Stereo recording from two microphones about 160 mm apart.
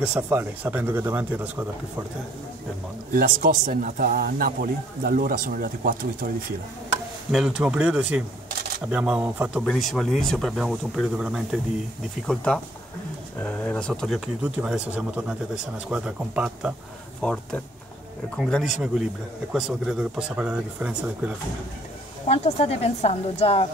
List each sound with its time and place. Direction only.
0.0 s speech: 10° right (ahead or behind)
3.1 s speech: 55° right (ahead or behind)
7.2 s speech: 5° right (ahead or behind)
13.4 s speech: 10° left (ahead or behind)
17.2 s speech: 5° left (ahead or behind)
22.2 s speech: 40° left (ahead or behind)